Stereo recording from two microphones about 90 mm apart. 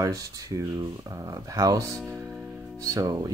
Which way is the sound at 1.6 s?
40° right (ahead or behind).